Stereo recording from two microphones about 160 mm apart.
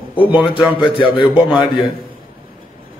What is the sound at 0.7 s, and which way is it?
Speech, 30° left (ahead or behind).